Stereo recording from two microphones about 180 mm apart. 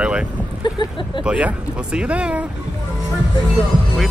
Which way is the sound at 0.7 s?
25° left (ahead or behind).